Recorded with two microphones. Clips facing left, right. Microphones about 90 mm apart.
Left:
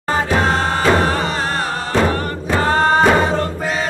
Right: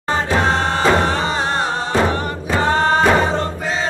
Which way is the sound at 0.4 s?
20° right (ahead or behind).